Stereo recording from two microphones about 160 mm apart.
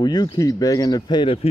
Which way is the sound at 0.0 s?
25° left (ahead or behind).